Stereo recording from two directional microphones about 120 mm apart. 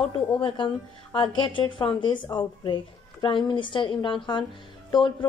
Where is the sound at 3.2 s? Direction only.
40° left (ahead or behind).